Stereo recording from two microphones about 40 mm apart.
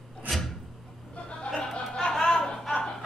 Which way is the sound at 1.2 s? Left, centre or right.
Left.